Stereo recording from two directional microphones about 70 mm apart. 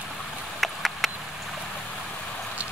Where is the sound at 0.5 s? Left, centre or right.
Centre.